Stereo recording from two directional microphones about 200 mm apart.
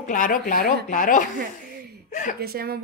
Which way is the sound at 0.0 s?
40° left (ahead or behind).